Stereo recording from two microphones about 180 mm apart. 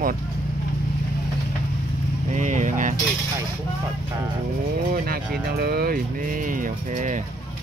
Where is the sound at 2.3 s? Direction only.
45° right (ahead or behind).